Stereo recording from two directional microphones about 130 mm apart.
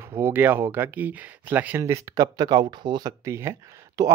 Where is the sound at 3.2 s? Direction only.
20° right (ahead or behind).